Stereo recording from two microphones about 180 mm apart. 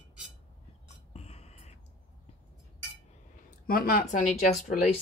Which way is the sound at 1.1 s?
35° left (ahead or behind).